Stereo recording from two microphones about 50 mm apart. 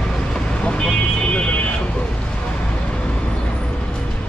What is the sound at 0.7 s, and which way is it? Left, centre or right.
Vehicle, centre.